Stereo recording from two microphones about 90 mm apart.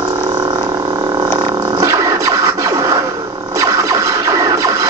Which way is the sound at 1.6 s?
40° right (ahead or behind).